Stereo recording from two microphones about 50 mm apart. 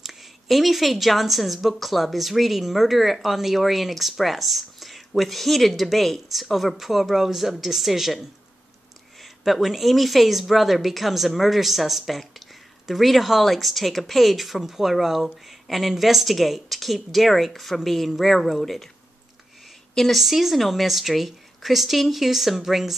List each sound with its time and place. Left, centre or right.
0.0 s speech: centre
20.1 s speech: centre